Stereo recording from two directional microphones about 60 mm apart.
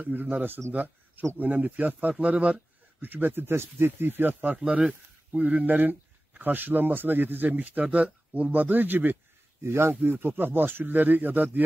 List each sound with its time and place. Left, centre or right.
0.0 s a man's voice: right
3.0 s speech: right
4.6 s speech: centre; by 9.2 s right
9.6 s speech: right